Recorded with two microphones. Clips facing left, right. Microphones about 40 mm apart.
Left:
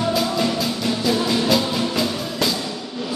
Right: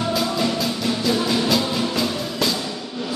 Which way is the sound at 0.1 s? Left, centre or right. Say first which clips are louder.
Left 1 dB; centre.